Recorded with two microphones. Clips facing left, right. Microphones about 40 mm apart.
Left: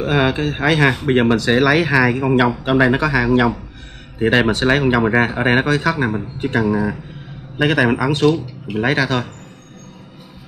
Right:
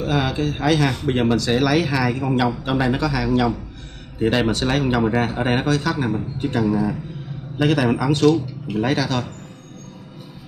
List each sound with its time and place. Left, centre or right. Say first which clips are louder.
0.0 s speech: left 4 dB; left